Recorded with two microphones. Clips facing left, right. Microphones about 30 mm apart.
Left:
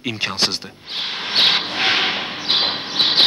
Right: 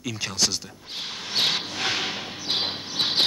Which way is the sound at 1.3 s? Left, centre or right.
Left.